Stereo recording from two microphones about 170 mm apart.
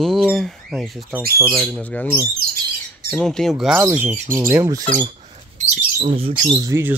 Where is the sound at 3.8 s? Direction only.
10° right (ahead or behind).